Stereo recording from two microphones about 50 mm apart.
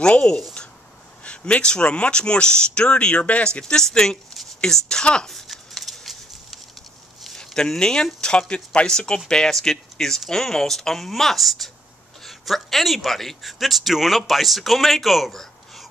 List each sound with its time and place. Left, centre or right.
0.0 s speech: centre
5.3 s a sound: centre
7.2 s a man's voice: centre